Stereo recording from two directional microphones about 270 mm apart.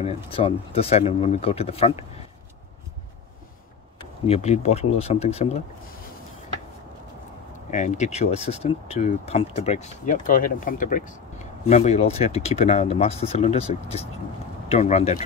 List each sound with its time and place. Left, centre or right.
0.0 s speech: left
4.3 s speech: left
7.7 s speech: left